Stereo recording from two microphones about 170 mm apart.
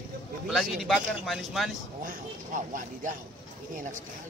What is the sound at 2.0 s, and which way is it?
Speech, 50° right (ahead or behind).